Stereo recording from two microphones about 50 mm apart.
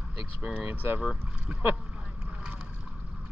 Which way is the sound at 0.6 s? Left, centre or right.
Right.